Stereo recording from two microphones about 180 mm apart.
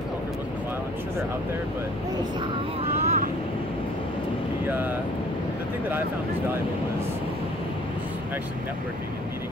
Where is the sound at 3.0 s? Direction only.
40° right (ahead or behind).